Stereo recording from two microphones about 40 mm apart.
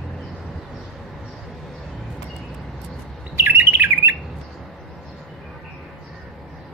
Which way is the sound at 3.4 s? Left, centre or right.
Right.